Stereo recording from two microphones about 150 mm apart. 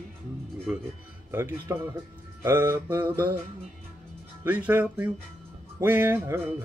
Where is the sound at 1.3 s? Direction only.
15° right (ahead or behind).